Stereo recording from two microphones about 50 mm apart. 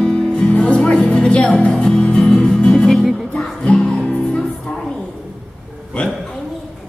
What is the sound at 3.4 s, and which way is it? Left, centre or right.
Music, left.